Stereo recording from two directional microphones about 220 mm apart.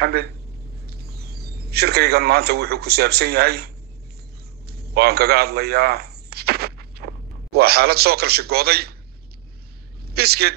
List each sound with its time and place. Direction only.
0.0 s a man's voice: 45° right (ahead or behind)
10.0 s a man's voice: 45° right (ahead or behind)